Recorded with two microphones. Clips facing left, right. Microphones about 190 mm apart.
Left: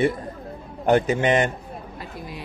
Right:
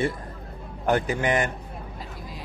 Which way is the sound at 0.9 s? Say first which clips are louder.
Left 5 dB; 20° left (ahead or behind).